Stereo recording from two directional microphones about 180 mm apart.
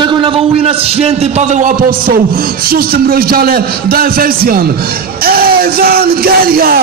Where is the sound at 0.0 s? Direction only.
25° right (ahead or behind).